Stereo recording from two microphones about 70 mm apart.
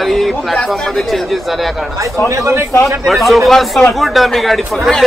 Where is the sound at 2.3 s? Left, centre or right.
Right.